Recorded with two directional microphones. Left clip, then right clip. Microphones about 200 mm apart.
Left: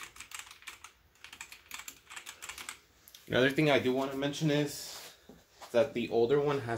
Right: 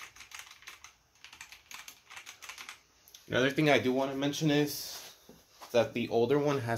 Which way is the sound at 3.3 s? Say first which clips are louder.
Left 1 dB; centre (ahead or behind).